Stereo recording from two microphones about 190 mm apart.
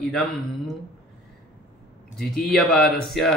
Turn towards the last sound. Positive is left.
turn(degrees=5)  # may be behind; listen again after turning